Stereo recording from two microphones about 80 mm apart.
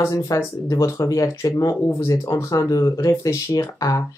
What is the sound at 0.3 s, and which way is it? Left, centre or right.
Speech, left.